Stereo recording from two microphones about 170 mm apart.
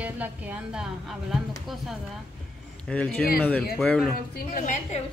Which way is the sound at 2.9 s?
5° left (ahead or behind).